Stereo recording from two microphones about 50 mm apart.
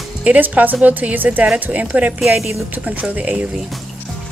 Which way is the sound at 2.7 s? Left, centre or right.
Right.